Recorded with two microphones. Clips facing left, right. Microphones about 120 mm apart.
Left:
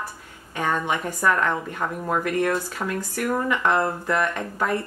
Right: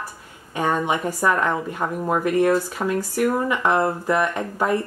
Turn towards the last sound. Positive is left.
turn(degrees=-15)  # may be behind; listen again after turning